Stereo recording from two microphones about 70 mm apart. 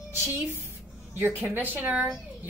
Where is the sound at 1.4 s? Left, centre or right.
Right.